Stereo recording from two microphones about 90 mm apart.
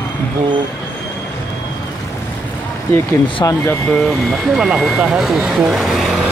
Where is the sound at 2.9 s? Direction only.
20° left (ahead or behind).